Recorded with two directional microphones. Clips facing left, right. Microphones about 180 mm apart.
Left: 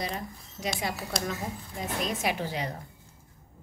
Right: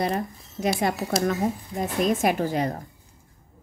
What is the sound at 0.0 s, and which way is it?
Speech, 55° right (ahead or behind).